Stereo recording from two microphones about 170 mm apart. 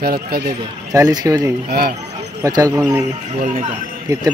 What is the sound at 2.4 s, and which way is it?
Speech, 20° right (ahead or behind).